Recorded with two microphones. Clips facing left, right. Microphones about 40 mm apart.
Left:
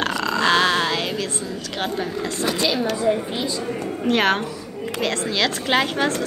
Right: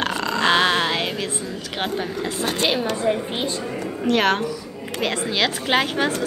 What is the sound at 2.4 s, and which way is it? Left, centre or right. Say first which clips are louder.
Speech: even; right.